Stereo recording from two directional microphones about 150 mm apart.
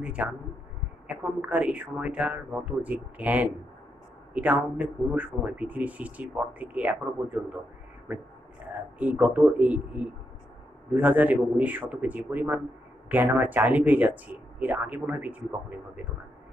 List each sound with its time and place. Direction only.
0.0 s speech: 5° right (ahead or behind)
8.9 s speech: 10° right (ahead or behind)